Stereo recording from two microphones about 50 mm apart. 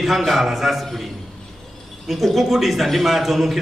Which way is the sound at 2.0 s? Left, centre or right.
Centre.